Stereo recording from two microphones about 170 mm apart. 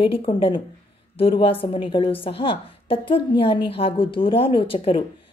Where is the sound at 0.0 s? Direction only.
30° left (ahead or behind).